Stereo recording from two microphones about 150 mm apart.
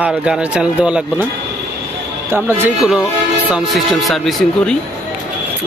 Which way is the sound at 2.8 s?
5° right (ahead or behind).